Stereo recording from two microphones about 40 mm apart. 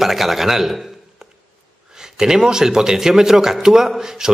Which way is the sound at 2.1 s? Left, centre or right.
Centre.